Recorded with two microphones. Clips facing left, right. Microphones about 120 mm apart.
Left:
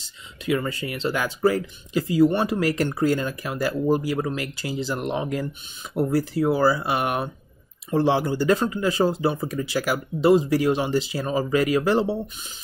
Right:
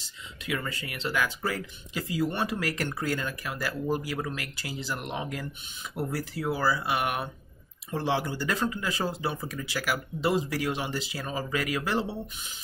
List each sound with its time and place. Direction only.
0.5 s speech: 30° left (ahead or behind)